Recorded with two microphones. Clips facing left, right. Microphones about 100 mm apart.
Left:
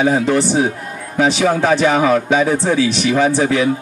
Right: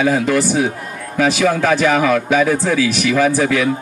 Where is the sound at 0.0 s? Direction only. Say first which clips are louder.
Left 1 dB; 30° left (ahead or behind).